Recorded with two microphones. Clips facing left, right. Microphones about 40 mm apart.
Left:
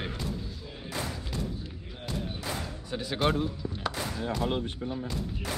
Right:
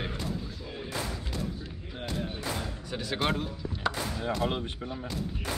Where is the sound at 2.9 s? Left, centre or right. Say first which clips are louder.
Left 1 dB; centre.